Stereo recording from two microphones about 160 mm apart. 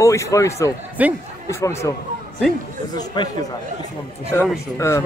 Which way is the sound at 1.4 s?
20° left (ahead or behind).